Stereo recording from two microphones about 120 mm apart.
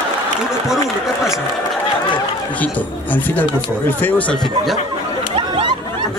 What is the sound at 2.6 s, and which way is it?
Speech, 15° left (ahead or behind).